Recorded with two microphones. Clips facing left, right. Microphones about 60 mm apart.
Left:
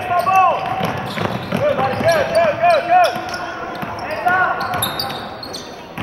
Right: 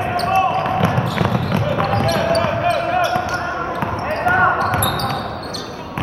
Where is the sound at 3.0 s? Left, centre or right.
Centre; by 5.2 s right.